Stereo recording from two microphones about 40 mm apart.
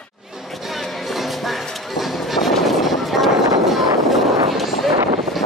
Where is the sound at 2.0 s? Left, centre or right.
Centre.